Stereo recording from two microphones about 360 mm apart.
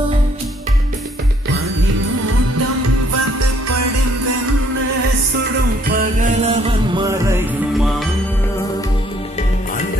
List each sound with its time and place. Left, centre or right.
5.9 s music: right; by 7.9 s centre